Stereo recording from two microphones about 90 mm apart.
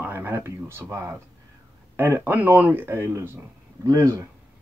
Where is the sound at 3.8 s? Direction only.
35° right (ahead or behind).